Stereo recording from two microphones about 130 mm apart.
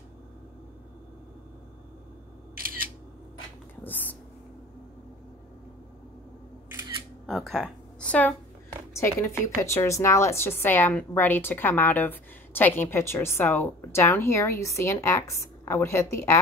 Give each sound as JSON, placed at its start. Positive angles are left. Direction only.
{"t": 2.5, "sound": "single-lens reflex camera", "side_deg": -90}
{"t": 3.8, "sound": "a sound", "side_deg": 15}
{"t": 7.2, "sound": "a woman's voice", "side_deg": 0}
{"t": 8.9, "sound": "a woman's voice", "side_deg": 20}